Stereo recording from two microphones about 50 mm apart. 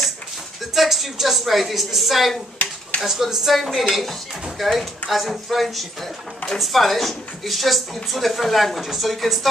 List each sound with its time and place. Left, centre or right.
0.7 s speech: centre